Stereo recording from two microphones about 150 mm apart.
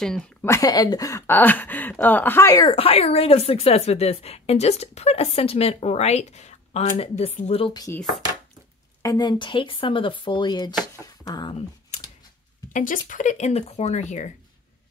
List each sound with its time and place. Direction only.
0.4 s speech: 20° left (ahead or behind)
2.7 s a woman's voice: 40° left (ahead or behind)
7.7 s speech: 25° left (ahead or behind)
9.0 s speech: 25° left (ahead or behind)
12.7 s a woman's voice: 60° left (ahead or behind)